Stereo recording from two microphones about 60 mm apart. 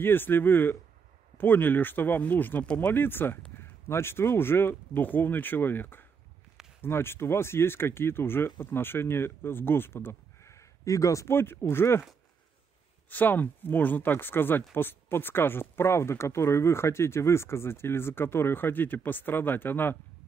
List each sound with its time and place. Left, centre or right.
0.0 s speech: left
10.9 s speech: left
11.3 s speech: left
13.1 s speech: left